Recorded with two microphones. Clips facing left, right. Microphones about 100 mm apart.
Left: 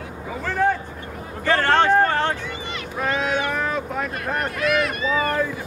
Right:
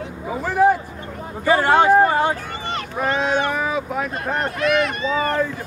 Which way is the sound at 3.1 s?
30° right (ahead or behind).